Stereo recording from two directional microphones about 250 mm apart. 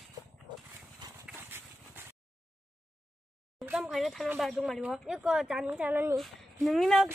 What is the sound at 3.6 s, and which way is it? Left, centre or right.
Speech, centre.